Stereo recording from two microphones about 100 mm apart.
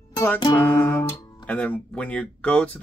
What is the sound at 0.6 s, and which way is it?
Speech, 20° left (ahead or behind).